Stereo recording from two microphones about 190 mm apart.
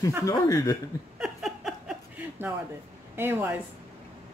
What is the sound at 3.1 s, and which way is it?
Speech, 10° right (ahead or behind).